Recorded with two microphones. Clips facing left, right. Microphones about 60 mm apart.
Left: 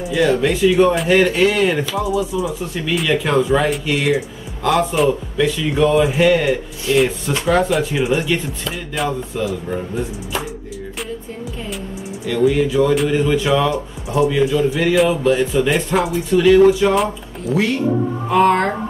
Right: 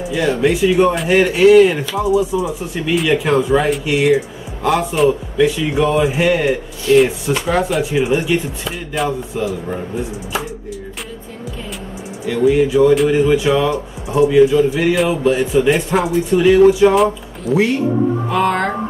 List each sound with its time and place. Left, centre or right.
0.0 s speech: centre
3.1 s speech: centre
12.3 s speech: centre
15.7 s speech: centre
16.3 s speech: centre
16.9 s speech: centre